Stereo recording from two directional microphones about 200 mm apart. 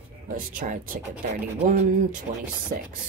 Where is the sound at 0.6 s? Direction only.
40° right (ahead or behind).